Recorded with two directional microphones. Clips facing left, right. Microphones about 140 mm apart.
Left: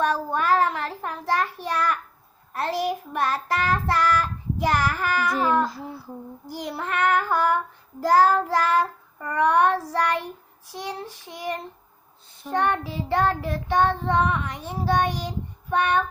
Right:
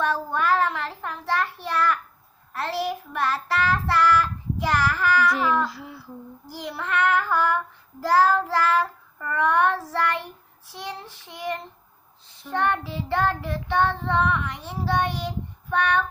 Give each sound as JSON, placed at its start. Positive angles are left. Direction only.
{"t": 0.0, "sound": "child singing", "side_deg": 15}